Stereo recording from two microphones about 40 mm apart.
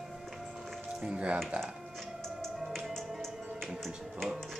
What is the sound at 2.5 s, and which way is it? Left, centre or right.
Music, centre.